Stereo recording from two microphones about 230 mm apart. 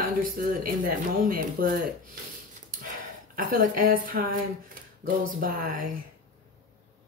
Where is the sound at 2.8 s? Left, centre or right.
Right.